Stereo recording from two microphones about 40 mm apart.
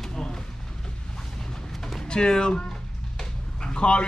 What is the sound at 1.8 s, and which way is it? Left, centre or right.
Music, centre.